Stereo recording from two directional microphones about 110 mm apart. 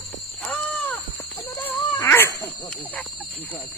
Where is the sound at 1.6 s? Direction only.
20° left (ahead or behind).